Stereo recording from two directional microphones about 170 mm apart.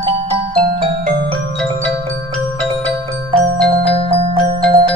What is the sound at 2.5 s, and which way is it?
Glockenspiel, 5° left (ahead or behind).